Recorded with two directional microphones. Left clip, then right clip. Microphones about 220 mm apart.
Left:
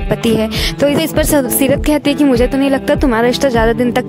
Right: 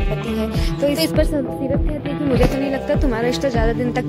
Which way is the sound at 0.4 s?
45° left (ahead or behind).